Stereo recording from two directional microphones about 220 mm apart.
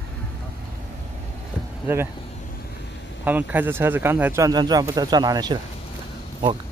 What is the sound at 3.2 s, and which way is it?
Speech, 10° right (ahead or behind).